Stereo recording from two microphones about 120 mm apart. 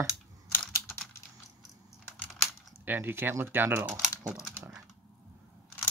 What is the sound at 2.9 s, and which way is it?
Speech, 15° right (ahead or behind).